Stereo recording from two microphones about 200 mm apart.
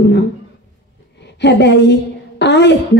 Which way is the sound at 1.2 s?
60° left (ahead or behind).